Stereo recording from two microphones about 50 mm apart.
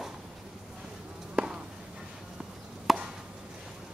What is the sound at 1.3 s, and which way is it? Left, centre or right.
Insect, centre.